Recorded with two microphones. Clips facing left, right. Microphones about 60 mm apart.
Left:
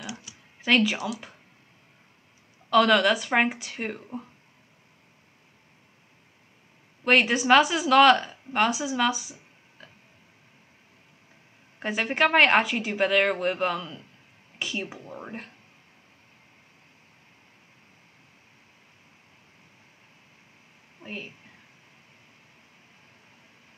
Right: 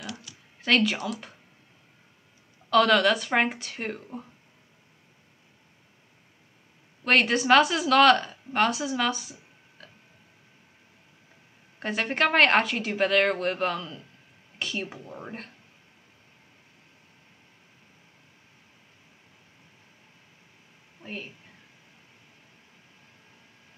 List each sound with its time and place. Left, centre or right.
0.0 s a sound: centre
0.6 s speech: centre
2.7 s speech: centre
7.1 s a woman's voice: centre
11.8 s a woman's voice: centre
21.0 s a sound: centre